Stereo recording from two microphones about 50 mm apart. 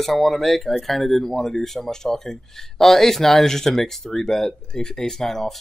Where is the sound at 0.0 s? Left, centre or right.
Centre.